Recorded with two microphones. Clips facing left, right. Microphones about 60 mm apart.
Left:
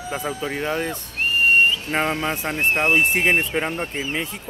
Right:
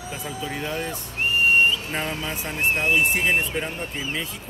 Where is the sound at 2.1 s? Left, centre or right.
Left.